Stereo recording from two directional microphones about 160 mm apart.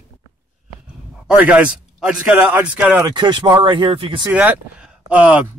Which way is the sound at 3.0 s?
25° right (ahead or behind).